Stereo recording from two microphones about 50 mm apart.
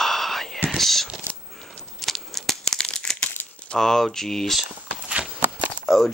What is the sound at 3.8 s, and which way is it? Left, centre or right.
Speech, centre.